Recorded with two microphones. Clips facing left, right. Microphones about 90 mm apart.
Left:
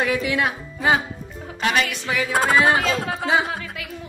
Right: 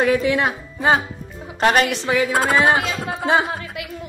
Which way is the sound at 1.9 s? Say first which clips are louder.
Right 5 dB; 20° right (ahead or behind).